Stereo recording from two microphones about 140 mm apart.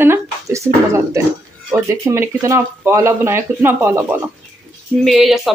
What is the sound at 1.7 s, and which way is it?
Speech, 20° right (ahead or behind).